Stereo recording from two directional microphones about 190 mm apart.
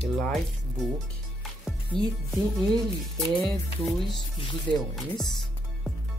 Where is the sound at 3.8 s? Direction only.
25° left (ahead or behind).